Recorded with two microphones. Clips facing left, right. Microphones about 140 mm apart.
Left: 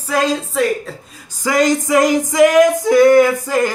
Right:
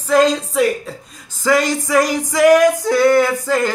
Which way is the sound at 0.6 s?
Centre (ahead or behind).